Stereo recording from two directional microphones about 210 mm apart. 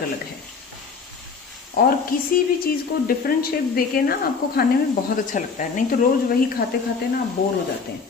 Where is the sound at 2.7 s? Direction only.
45° left (ahead or behind).